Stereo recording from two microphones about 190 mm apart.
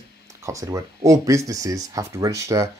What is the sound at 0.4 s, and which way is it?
Speech, 15° right (ahead or behind).